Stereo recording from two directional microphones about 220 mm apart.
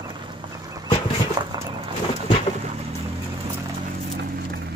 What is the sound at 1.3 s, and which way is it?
Vehicle, 20° right (ahead or behind).